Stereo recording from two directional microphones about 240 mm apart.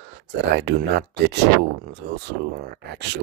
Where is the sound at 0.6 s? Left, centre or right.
Right.